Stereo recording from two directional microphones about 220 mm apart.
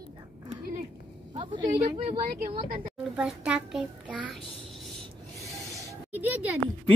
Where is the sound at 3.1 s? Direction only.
5° right (ahead or behind).